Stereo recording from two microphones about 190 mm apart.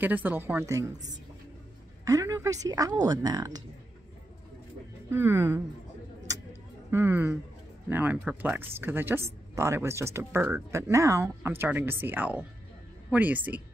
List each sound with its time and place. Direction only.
0.0 s speech: 10° right (ahead or behind)
2.0 s a woman's voice: 15° right (ahead or behind)
5.1 s speech: 10° right (ahead or behind)
6.9 s speech: 10° right (ahead or behind)